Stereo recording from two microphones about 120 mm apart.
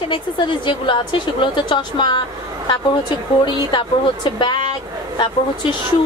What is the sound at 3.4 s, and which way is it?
A woman's voice, 40° left (ahead or behind).